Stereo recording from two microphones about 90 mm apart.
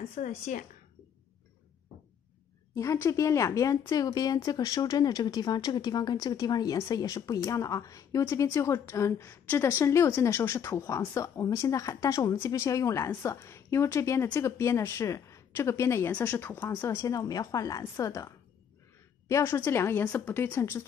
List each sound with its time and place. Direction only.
2.7 s a woman's voice: 35° left (ahead or behind)
16.1 s a woman's voice: 15° left (ahead or behind)